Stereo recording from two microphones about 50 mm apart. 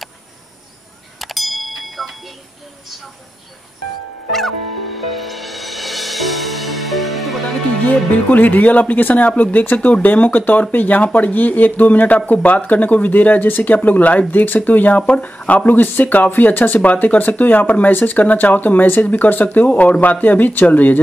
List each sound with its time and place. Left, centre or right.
1.2 s a sound: centre
4.3 s music: centre
7.8 s speech: left
9.8 s speech: left